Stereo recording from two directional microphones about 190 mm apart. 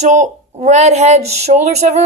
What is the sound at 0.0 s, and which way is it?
Speech, 40° right (ahead or behind).